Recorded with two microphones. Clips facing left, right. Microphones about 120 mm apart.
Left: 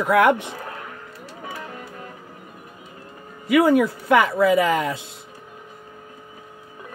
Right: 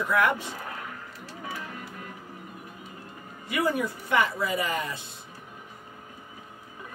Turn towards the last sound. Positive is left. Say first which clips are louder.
# left 10 dB
turn(degrees=90)